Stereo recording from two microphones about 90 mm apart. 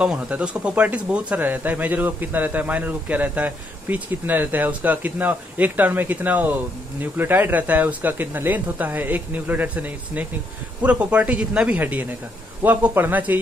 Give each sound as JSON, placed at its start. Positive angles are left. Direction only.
{"t": 0.0, "sound": "speech", "side_deg": -10}